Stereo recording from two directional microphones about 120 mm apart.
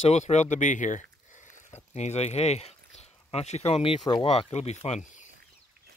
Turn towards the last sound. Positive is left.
turn(degrees=90)